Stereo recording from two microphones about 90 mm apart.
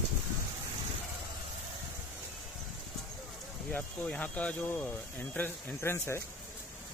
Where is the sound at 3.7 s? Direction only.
15° left (ahead or behind).